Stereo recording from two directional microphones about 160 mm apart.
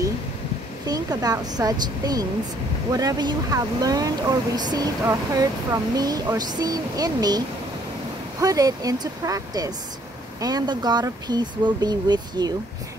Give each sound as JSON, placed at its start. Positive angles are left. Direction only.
{"t": 0.8, "sound": "speech", "side_deg": -25}